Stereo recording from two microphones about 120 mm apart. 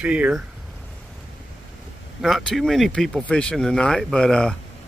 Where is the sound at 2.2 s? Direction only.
Centre (ahead or behind).